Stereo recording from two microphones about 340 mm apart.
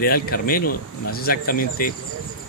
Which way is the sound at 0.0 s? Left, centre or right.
Left.